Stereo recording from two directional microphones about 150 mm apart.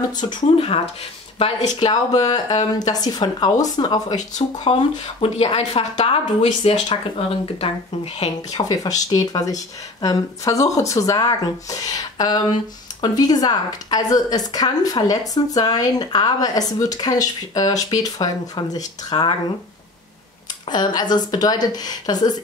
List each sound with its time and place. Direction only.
0.1 s speech: 25° left (ahead or behind)
1.4 s a woman's voice: 40° left (ahead or behind)
2.1 s speech: 30° left (ahead or behind)
4.7 s a woman's voice: 40° left (ahead or behind)
8.5 s a woman's voice: 25° left (ahead or behind)
20.6 s speech: 30° left (ahead or behind)